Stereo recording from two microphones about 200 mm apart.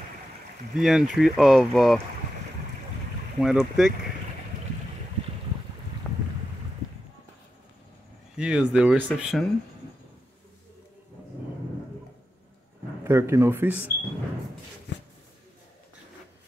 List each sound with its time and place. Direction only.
0.7 s speech: centre (ahead or behind)
3.3 s speech: centre (ahead or behind)
6.0 s boat: 5° left (ahead or behind)
8.4 s speech: 5° right (ahead or behind)
13.0 s speech: 15° right (ahead or behind)
14.9 s a sound: 60° left (ahead or behind)